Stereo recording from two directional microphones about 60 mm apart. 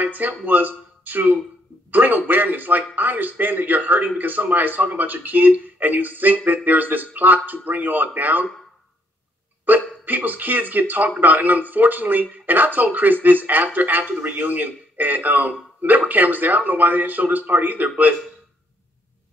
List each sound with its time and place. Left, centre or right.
0.0 s speech: right
9.7 s speech: right